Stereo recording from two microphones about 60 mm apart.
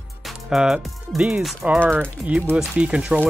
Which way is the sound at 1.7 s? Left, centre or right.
Right.